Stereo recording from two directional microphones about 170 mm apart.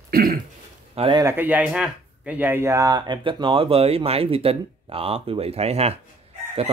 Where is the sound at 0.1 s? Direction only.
60° right (ahead or behind).